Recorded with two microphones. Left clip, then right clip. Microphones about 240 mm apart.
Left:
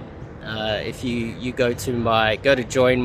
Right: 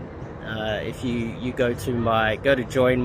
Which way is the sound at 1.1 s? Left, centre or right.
Left.